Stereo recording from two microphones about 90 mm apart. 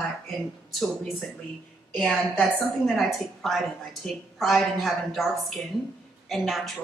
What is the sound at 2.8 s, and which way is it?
A woman's voice, centre (ahead or behind).